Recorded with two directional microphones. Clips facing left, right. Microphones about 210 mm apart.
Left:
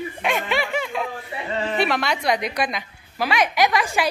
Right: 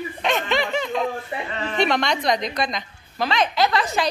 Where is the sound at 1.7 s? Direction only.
5° left (ahead or behind).